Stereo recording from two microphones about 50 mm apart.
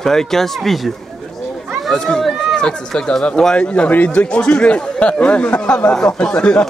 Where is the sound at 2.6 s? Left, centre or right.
Centre.